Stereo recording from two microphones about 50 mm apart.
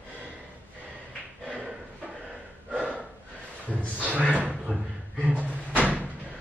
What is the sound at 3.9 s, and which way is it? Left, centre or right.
Speech, right.